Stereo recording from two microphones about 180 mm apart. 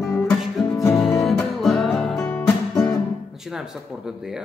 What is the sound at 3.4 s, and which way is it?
Speech, 5° right (ahead or behind).